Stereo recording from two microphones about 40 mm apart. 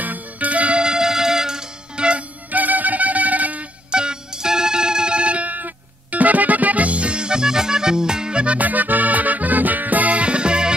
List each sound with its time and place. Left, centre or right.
0.0 s music: right
0.8 s music: centre
2.5 s music: right
3.9 s music: centre
8.5 s music: right